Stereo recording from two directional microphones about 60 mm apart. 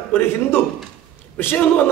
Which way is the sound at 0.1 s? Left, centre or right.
Left.